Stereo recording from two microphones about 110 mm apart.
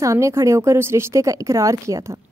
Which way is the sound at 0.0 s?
30° right (ahead or behind).